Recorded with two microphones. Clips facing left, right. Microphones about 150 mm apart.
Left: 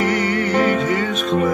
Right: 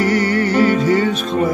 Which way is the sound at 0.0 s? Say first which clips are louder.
Right 3 dB; 35° right (ahead or behind).